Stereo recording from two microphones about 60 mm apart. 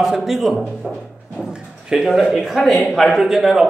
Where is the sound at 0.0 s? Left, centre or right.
Centre.